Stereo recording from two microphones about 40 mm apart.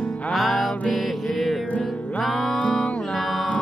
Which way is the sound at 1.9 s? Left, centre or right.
Left.